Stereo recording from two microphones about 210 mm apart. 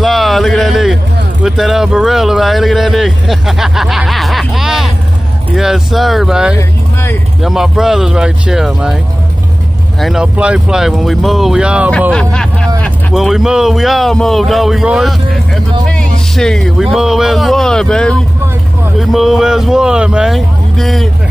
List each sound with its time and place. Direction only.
0.0 s a sound: centre (ahead or behind)
1.4 s speech: centre (ahead or behind)
6.5 s vehicle: 10° left (ahead or behind)
7.4 s speech: centre (ahead or behind)
12.1 s music: 5° left (ahead or behind)
12.8 s a man's voice: centre (ahead or behind)